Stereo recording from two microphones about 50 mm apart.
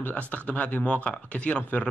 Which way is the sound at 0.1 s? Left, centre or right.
Left.